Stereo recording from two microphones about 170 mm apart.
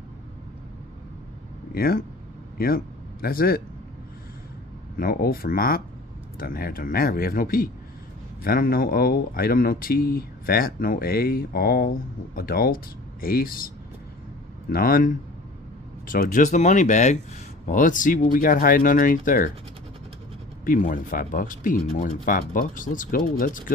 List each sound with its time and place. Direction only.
1.7 s speech: 60° left (ahead or behind)
4.9 s speech: 60° left (ahead or behind)
14.7 s speech: 60° left (ahead or behind)
20.6 s speech: 55° left (ahead or behind)